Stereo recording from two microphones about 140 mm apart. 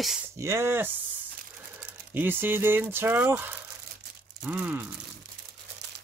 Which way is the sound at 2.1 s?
15° right (ahead or behind).